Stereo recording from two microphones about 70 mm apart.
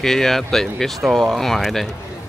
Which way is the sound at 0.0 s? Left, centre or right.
Centre.